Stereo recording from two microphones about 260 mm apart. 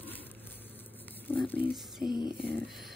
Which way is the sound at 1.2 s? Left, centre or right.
Centre.